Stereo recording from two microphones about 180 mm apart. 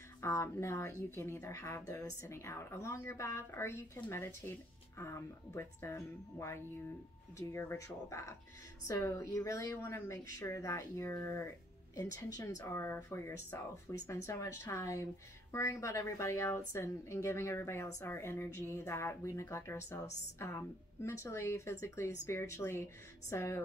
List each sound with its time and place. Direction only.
0.2 s speech: 15° left (ahead or behind)